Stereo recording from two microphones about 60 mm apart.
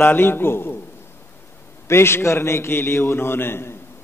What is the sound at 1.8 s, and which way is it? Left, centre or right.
A man's voice, left.